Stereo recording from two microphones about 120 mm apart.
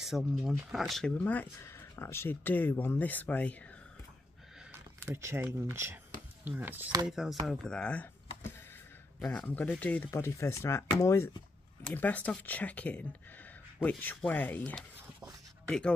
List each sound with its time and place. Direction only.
0.0 s speech: centre (ahead or behind); by 3.5 s 15° left (ahead or behind)
5.0 s speech: 20° right (ahead or behind)
7.1 s speech: 5° right (ahead or behind)
9.3 s speech: 15° left (ahead or behind)